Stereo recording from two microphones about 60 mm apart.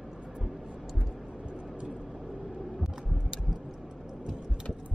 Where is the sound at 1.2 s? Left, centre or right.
Centre.